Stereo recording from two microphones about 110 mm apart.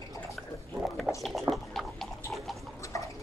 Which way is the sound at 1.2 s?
Centre (ahead or behind).